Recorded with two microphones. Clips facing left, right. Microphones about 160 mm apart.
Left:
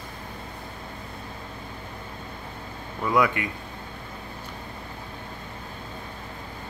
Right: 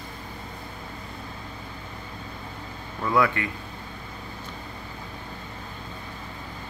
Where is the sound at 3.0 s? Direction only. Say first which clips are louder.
Even; 15° left (ahead or behind).